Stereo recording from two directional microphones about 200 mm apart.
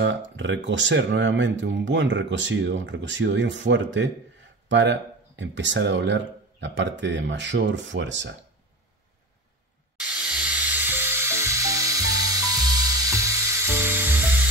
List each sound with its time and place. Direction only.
0.0 s speech: 65° right (ahead or behind)
9.9 s music: 5° right (ahead or behind)